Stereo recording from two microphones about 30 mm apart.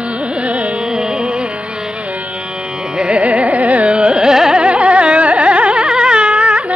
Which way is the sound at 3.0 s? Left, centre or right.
Right.